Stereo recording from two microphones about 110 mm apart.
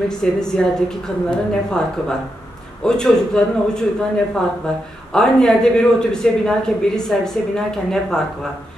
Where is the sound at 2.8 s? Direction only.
5° left (ahead or behind).